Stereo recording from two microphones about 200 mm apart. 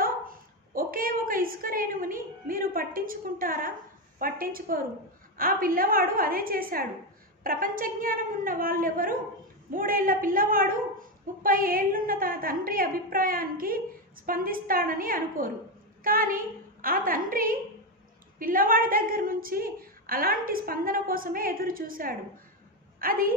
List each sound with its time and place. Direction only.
0.0 s dog: 45° right (ahead or behind)
4.2 s a woman's voice: 45° right (ahead or behind)